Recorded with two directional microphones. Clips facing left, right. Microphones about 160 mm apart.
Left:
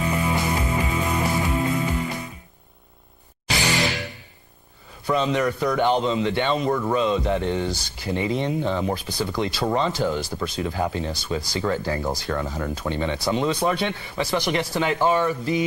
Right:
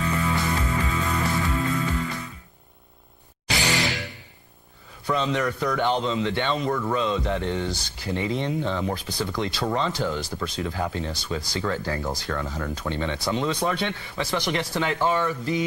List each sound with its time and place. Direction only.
0.0 s music: 20° left (ahead or behind)
5.0 s speech: 15° left (ahead or behind)
12.8 s speech: 15° left (ahead or behind)